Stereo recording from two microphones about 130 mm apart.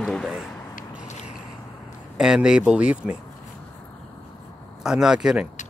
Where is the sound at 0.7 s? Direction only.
60° left (ahead or behind).